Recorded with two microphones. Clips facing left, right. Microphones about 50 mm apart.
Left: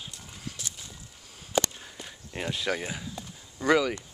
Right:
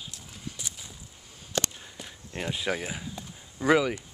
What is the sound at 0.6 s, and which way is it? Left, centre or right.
Walk, centre.